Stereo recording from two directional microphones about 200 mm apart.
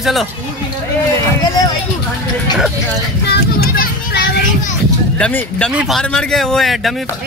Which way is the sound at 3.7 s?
55° left (ahead or behind).